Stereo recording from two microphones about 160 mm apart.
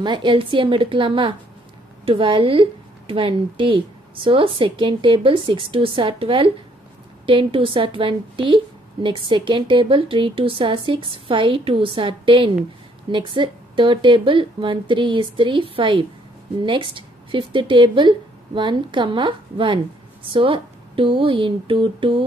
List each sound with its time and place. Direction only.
0.0 s a woman's voice: 30° right (ahead or behind)